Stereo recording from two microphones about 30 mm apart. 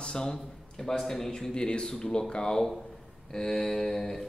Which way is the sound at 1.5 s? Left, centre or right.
Left.